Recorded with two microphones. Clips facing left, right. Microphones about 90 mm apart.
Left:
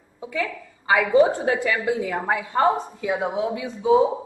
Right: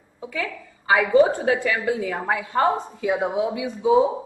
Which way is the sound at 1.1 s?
15° left (ahead or behind).